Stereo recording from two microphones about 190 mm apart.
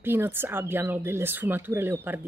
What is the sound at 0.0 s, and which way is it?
Speech, 10° right (ahead or behind).